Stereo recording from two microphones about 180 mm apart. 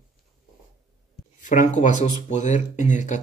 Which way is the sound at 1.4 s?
45° left (ahead or behind).